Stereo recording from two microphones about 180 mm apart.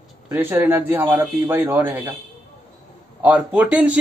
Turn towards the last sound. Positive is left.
turn(degrees=-10)  # may be behind; listen again after turning